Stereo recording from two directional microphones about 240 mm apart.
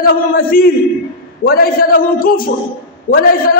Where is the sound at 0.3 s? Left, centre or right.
Left.